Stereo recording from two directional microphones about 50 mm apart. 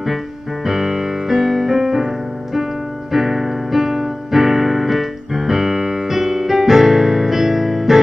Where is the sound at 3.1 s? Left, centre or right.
Centre.